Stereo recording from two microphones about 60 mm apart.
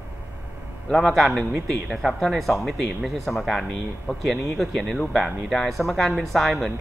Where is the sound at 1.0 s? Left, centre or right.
Centre.